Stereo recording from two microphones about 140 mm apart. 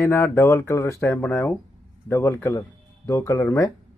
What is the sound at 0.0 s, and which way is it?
Speech, 15° left (ahead or behind).